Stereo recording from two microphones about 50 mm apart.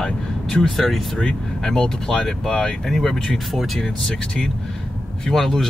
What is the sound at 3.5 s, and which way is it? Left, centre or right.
Speech, centre.